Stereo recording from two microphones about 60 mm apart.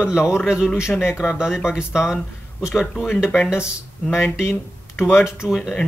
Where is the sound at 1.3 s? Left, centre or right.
Centre.